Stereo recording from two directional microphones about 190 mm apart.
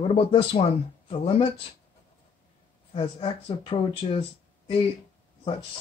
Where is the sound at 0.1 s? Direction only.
30° left (ahead or behind).